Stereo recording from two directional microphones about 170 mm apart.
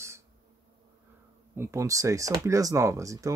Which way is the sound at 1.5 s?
15° right (ahead or behind).